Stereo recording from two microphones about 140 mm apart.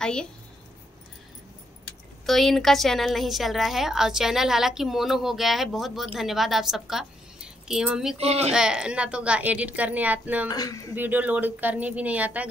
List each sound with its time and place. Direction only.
0.0 s a woman's voice: 5° left (ahead or behind)
2.2 s a woman's voice: centre (ahead or behind)
8.2 s speech: 50° right (ahead or behind)
8.5 s a woman's voice: 5° right (ahead or behind)
10.5 s speech: 25° left (ahead or behind)
11.0 s a woman's voice: 10° right (ahead or behind)